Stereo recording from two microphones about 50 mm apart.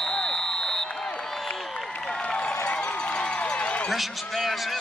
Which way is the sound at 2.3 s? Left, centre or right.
Left.